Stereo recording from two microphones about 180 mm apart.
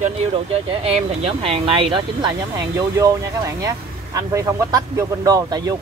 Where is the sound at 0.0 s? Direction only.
35° right (ahead or behind).